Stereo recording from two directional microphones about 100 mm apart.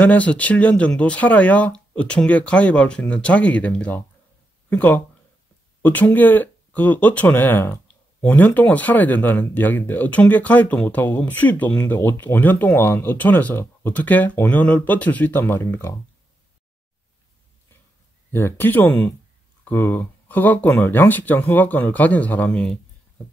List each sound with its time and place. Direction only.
0.0 s speech: 15° left (ahead or behind)
18.3 s speech: 20° left (ahead or behind)